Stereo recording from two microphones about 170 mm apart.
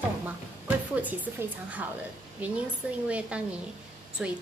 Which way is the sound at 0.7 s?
10° right (ahead or behind).